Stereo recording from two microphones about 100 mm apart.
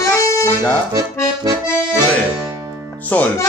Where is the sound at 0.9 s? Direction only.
40° right (ahead or behind).